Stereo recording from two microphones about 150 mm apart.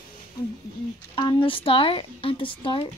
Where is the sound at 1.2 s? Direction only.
30° left (ahead or behind).